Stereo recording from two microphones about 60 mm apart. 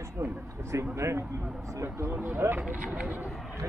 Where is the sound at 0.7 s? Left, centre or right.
Right.